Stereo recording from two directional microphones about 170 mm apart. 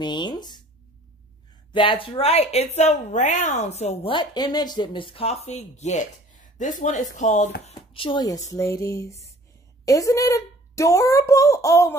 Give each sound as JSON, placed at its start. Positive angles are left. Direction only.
{"t": 0.0, "sound": "speech", "side_deg": 25}
{"t": 1.7, "sound": "a woman's voice", "side_deg": 30}
{"t": 7.6, "sound": "a child's voice", "side_deg": 30}